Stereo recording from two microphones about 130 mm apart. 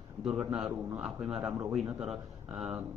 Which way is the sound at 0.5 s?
5° right (ahead or behind).